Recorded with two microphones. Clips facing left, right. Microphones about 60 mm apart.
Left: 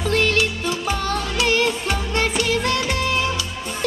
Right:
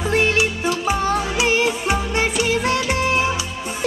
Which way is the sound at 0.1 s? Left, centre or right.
Centre.